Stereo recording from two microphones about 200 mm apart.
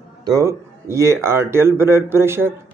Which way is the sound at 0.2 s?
15° right (ahead or behind).